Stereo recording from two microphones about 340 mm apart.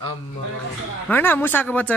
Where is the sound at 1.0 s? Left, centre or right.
Centre.